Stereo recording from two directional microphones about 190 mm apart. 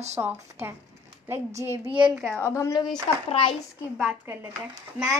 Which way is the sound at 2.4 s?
15° left (ahead or behind).